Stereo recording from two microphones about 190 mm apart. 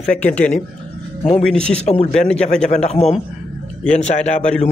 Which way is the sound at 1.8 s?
35° left (ahead or behind).